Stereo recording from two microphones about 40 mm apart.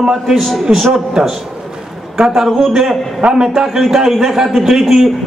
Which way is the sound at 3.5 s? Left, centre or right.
Centre.